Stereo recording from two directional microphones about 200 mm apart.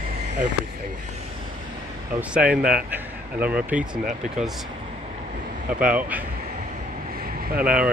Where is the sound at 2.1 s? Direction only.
5° right (ahead or behind).